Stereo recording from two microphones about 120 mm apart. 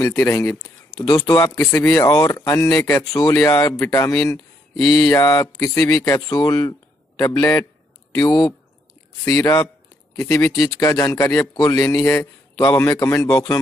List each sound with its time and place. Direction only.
0.0 s a man's voice: 25° left (ahead or behind)
4.7 s mantra: centre (ahead or behind)
5.3 s a man's voice: 30° left (ahead or behind)
10.8 s a man's voice: 30° left (ahead or behind)